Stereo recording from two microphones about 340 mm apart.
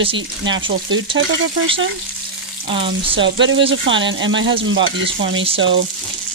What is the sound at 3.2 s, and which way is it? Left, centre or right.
Frying, right.